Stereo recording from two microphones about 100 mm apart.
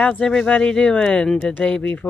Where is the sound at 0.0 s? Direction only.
10° left (ahead or behind).